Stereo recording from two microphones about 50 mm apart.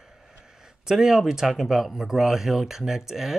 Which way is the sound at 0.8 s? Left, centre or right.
Centre.